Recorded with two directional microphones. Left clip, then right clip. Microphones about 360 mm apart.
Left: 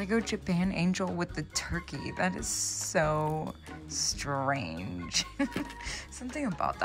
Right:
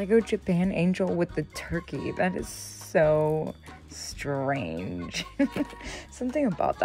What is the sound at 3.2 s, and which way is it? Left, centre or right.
Speech, left.